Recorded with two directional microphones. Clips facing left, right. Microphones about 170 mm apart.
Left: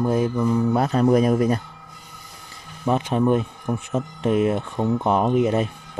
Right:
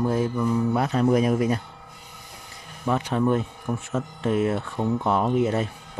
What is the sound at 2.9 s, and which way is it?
Speech, 20° left (ahead or behind).